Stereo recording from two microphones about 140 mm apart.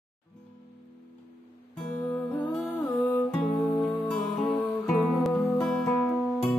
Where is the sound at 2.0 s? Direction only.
10° left (ahead or behind).